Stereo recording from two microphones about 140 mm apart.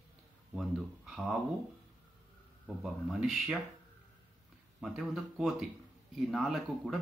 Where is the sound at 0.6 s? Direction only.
Centre (ahead or behind).